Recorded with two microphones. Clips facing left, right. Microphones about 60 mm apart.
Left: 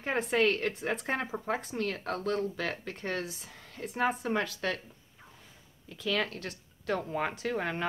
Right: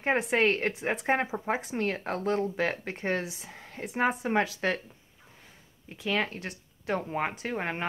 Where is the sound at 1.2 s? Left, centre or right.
Centre.